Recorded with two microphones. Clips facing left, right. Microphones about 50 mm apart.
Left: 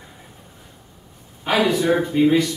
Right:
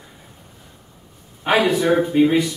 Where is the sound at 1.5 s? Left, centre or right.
Centre.